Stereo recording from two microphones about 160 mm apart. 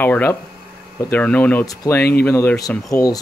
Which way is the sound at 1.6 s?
20° left (ahead or behind).